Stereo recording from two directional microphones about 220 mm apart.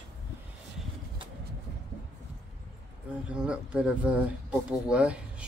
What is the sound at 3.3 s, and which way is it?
Speech, 5° right (ahead or behind).